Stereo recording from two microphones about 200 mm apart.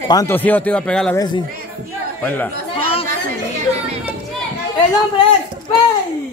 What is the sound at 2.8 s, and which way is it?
Chatter, 30° left (ahead or behind).